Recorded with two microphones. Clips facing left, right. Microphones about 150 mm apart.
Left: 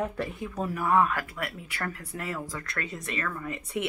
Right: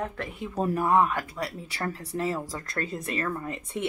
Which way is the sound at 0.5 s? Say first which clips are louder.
Right 2 dB; 30° right (ahead or behind).